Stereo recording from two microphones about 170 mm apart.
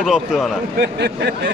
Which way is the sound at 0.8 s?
75° right (ahead or behind).